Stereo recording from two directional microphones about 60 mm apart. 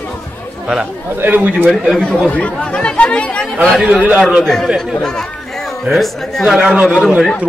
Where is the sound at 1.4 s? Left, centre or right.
Right.